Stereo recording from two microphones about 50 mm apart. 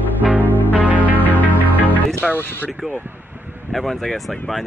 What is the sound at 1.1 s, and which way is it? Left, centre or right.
Music, left.